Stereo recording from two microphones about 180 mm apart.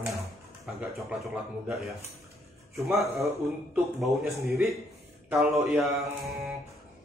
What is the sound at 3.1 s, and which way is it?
Speech, 15° right (ahead or behind).